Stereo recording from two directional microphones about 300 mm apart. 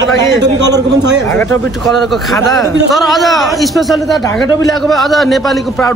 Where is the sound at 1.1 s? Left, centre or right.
Centre.